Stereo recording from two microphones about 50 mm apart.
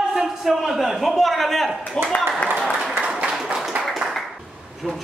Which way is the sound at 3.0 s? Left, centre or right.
Centre.